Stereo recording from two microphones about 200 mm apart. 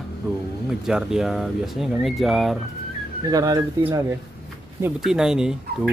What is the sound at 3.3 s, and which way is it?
Speech, 20° right (ahead or behind).